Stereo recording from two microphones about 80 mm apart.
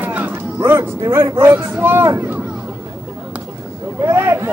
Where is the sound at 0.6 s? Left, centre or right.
Right.